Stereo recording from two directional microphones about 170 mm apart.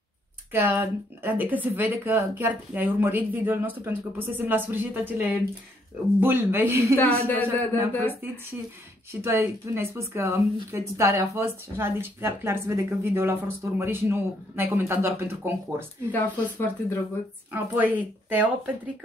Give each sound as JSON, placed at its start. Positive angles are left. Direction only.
{"t": 0.5, "sound": "speech", "side_deg": -15}
{"t": 7.0, "sound": "a woman's voice", "side_deg": 10}
{"t": 9.1, "sound": "speech", "side_deg": -15}
{"t": 16.1, "sound": "a woman's voice", "side_deg": 10}
{"t": 17.5, "sound": "speech", "side_deg": -10}